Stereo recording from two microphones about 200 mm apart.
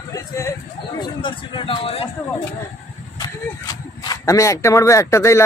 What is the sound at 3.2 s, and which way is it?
Speech, 20° left (ahead or behind).